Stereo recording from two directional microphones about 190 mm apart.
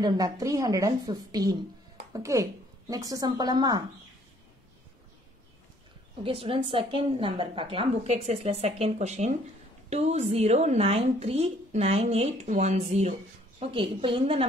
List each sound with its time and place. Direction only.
0.0 s a woman's voice: 20° right (ahead or behind)
6.2 s a woman's voice: 30° right (ahead or behind)